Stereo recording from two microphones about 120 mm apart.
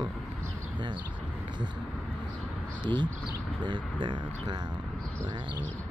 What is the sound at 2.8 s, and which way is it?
Speech, 40° right (ahead or behind).